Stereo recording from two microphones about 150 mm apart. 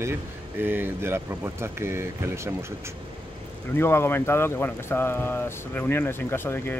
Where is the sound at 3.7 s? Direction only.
15° left (ahead or behind).